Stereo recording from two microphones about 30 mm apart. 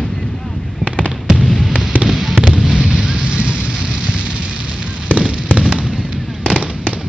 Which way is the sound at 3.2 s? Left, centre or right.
Right.